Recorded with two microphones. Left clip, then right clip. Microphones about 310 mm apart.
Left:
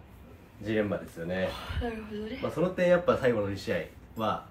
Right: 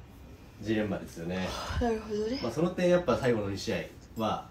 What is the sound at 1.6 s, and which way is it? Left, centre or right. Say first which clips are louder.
Speech: right 5 dB; centre.